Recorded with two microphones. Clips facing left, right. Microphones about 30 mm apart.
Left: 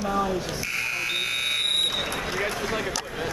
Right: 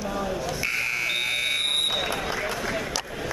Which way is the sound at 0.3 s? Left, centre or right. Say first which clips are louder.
Right 1 dB; centre.